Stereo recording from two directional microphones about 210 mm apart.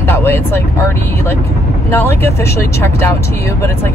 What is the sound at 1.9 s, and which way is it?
Speech, 10° left (ahead or behind).